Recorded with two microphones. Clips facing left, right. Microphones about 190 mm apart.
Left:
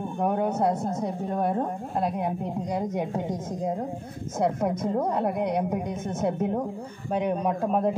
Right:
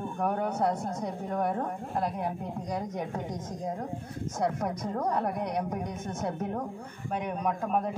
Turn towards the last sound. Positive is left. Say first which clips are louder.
# left 5 dB
turn(degrees=30)  # may be behind; listen again after turning